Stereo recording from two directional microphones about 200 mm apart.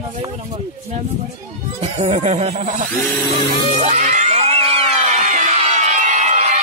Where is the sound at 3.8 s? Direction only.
35° right (ahead or behind).